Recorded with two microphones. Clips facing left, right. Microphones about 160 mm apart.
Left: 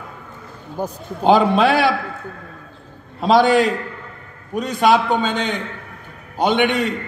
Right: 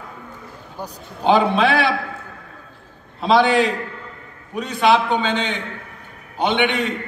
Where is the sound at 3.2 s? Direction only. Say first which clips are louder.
Left 2 dB; 40° left (ahead or behind).